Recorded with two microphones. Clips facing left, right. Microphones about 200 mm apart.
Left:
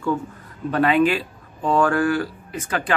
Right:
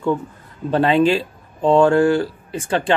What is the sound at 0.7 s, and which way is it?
Speech, 30° right (ahead or behind).